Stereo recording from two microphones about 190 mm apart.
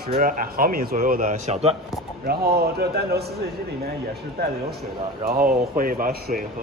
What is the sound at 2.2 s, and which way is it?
A man's voice, 55° right (ahead or behind).